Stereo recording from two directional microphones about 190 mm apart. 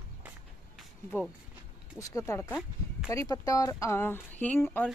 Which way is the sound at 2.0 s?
15° left (ahead or behind).